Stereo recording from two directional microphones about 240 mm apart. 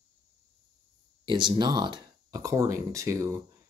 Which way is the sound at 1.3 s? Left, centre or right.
Centre.